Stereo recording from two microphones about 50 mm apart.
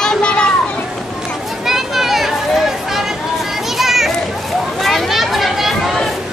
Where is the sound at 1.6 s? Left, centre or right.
Centre.